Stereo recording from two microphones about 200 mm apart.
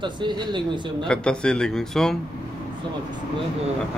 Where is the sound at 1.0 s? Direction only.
5° left (ahead or behind).